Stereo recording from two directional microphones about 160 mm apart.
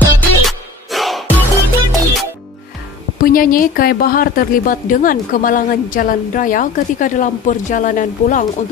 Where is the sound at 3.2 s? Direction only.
60° left (ahead or behind).